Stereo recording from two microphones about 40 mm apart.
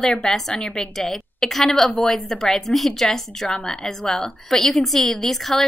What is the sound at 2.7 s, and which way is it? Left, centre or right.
A woman's voice, centre.